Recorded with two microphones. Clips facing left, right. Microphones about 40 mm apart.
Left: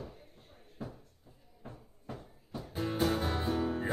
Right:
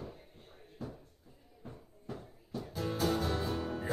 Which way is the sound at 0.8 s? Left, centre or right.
Centre.